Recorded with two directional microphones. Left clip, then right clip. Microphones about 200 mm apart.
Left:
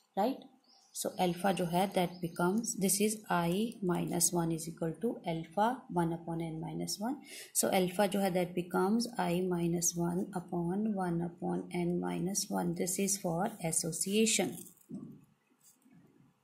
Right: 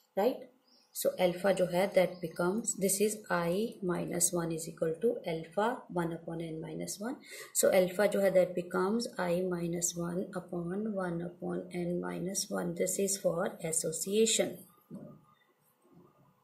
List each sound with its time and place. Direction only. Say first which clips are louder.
0.9 s speech: right 4 dB; 25° left (ahead or behind)